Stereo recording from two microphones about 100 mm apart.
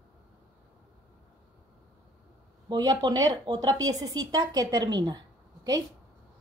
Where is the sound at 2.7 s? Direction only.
45° right (ahead or behind).